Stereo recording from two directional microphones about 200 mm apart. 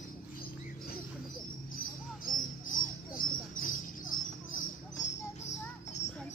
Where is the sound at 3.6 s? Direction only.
45° left (ahead or behind).